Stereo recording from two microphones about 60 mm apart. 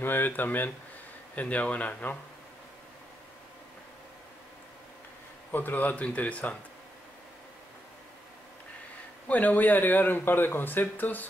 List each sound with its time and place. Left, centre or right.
0.0 s a man's voice: left
5.5 s a man's voice: left
9.3 s speech: left